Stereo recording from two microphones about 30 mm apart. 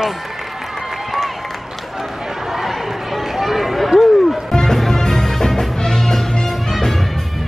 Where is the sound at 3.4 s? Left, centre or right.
Centre.